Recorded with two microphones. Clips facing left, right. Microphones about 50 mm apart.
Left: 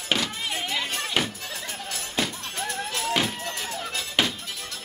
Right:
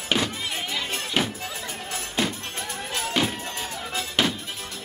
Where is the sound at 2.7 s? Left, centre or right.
Right.